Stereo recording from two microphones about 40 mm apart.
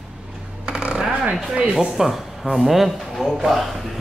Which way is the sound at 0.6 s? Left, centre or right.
Right.